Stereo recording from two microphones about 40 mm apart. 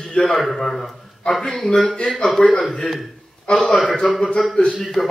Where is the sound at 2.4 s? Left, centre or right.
Centre.